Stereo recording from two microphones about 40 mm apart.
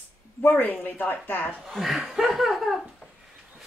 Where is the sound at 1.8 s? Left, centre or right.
Centre.